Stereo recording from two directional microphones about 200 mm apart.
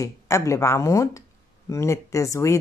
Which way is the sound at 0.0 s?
15° left (ahead or behind).